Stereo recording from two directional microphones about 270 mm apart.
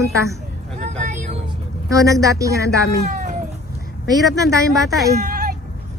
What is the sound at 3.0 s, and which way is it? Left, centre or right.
Cat, right.